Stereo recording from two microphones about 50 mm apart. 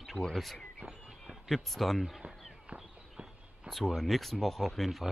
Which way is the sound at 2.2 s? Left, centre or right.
Centre.